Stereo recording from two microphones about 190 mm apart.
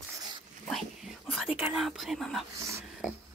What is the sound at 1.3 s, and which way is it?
Speech, centre (ahead or behind).